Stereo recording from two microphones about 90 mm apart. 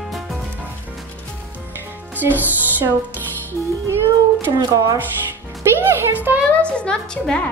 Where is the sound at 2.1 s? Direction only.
20° right (ahead or behind).